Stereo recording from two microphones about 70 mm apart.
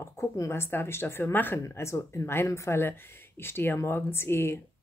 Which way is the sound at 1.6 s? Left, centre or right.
Left.